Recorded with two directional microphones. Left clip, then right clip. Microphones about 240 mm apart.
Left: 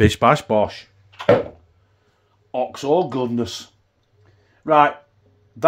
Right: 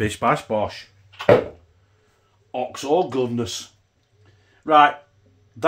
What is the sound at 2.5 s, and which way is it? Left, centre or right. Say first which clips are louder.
Speech: left 2 dB; left.